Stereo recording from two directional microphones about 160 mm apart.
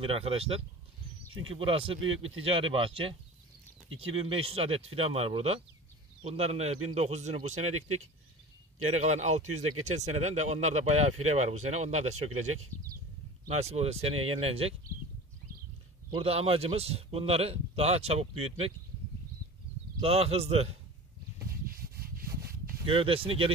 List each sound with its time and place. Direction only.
0.0 s a man's voice: 35° right (ahead or behind)
4.2 s a man's voice: 40° right (ahead or behind)
8.8 s speech: 45° right (ahead or behind)
13.6 s a man's voice: 40° right (ahead or behind)
16.1 s a man's voice: 35° right (ahead or behind)
20.0 s a man's voice: 40° right (ahead or behind)
22.8 s a man's voice: 35° right (ahead or behind)